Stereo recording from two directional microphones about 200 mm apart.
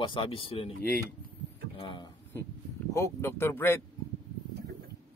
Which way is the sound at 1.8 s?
25° left (ahead or behind).